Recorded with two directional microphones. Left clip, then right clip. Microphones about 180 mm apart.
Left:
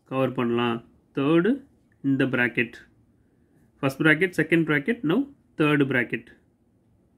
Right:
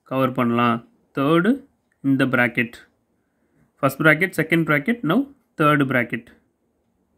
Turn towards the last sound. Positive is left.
turn(degrees=-40)  # may be behind; listen again after turning